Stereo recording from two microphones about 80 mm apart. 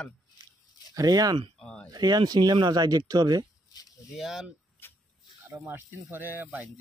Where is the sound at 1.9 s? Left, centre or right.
Right.